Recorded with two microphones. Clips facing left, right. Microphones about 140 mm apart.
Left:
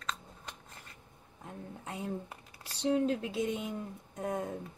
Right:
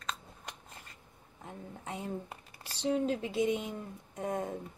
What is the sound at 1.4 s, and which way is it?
Speech, centre (ahead or behind).